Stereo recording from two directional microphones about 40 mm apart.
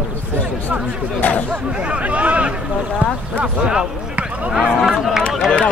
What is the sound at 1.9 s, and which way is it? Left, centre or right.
Speech, right.